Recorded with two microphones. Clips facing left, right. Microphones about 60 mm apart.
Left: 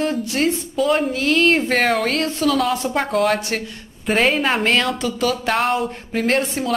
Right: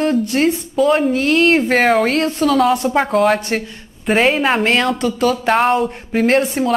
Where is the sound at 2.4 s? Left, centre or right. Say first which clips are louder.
Right 5 dB; centre.